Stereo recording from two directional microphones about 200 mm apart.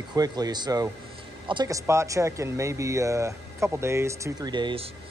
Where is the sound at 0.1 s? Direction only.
20° right (ahead or behind).